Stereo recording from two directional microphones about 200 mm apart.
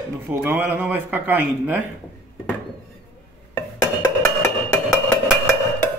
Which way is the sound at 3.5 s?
15° left (ahead or behind).